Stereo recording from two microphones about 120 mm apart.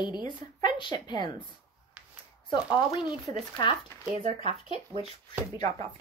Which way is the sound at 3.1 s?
Centre (ahead or behind).